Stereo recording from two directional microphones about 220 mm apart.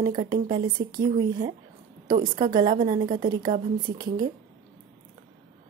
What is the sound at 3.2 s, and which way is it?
Speech, 40° right (ahead or behind).